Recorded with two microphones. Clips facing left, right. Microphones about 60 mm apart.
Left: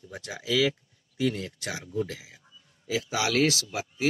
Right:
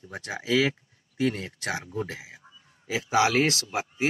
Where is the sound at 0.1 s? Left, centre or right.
Right.